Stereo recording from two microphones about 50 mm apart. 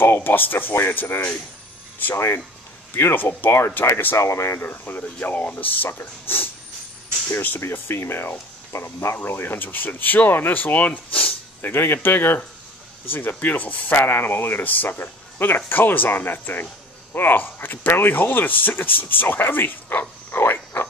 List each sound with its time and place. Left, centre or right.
0.0 s speech: left
3.0 s speech: left
4.6 s speech: left
7.7 s speech: left
8.7 s speech: left
11.6 s speech: left
13.9 s speech: left